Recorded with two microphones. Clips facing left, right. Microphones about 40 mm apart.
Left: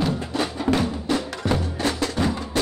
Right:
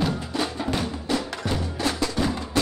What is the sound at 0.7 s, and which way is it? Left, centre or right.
Music, left.